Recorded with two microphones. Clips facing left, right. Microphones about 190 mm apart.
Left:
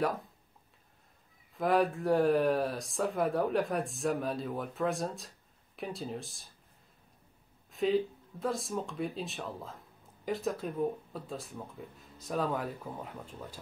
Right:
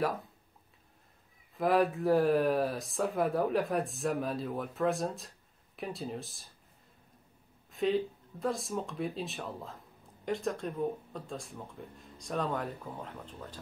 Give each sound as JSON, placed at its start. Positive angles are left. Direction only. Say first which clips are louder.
{"t": 1.6, "sound": "speech", "louder": "right 1 dB", "side_deg": 0}
{"t": 7.7, "sound": "speech", "louder": "left 1 dB", "side_deg": 0}